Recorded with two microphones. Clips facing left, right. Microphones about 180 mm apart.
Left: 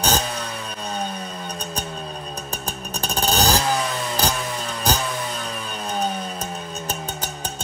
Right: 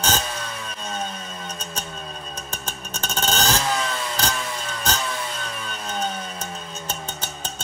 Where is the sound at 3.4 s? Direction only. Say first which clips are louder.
Left 4 dB; 35° left (ahead or behind).